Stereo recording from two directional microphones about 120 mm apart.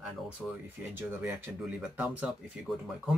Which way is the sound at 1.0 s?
20° right (ahead or behind).